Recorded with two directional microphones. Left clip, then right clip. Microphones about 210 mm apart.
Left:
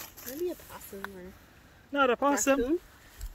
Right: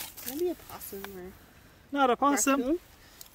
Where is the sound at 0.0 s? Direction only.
40° right (ahead or behind).